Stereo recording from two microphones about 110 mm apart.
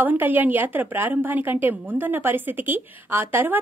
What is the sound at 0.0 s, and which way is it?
A woman's voice, 15° right (ahead or behind).